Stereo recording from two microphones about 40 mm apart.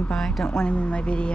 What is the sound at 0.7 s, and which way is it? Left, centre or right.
Speech, left.